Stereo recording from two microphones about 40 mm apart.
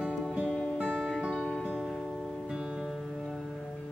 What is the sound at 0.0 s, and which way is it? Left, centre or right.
Music, right.